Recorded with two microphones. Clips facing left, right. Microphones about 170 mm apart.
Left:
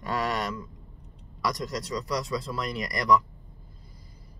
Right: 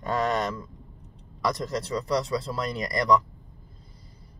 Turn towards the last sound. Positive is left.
turn(degrees=-25)  # may be behind; listen again after turning